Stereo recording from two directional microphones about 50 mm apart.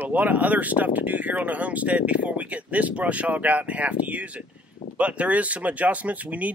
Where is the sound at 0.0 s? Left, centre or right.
Right.